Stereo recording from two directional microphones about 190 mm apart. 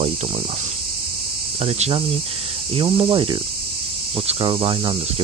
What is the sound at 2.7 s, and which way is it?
Speech, 25° right (ahead or behind).